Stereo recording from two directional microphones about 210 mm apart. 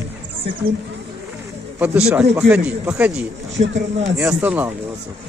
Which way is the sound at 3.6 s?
30° right (ahead or behind).